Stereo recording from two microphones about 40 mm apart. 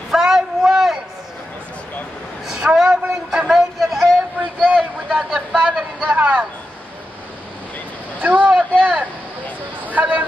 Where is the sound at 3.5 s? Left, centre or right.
Centre.